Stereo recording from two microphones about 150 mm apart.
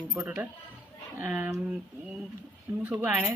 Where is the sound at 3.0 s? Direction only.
10° right (ahead or behind).